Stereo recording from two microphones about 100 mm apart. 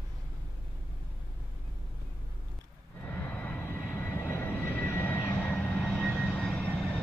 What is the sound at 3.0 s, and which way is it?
Vehicle, 15° left (ahead or behind).